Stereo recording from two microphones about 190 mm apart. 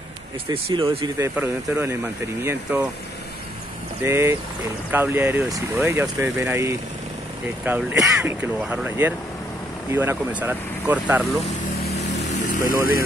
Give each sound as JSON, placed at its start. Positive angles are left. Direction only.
{"t": 0.5, "sound": "speech", "side_deg": -25}
{"t": 4.0, "sound": "speech", "side_deg": -15}
{"t": 12.1, "sound": "vehicle", "side_deg": 40}